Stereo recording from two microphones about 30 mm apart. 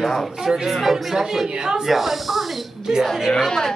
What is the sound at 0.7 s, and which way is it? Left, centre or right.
Speech, centre.